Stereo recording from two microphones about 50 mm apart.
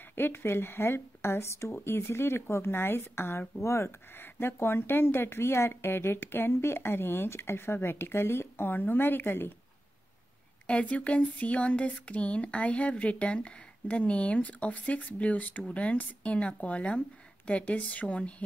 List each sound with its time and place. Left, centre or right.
0.1 s speech: left
4.2 s speech: left
10.7 s speech: left